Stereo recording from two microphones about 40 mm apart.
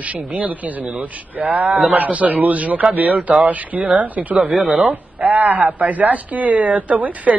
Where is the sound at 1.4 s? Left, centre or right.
Right.